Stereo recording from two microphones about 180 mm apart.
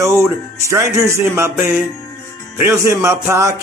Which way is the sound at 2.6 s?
15° right (ahead or behind).